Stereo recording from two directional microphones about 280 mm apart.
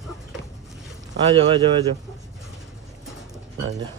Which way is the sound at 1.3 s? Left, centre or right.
Centre.